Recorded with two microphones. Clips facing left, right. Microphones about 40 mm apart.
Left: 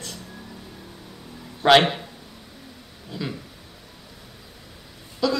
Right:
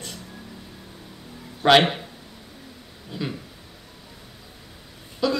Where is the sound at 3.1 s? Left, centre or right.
Centre.